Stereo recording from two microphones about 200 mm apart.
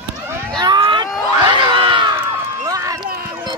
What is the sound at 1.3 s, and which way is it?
Crowd, 25° right (ahead or behind).